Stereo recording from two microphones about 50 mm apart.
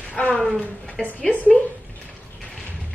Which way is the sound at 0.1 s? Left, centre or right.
Left.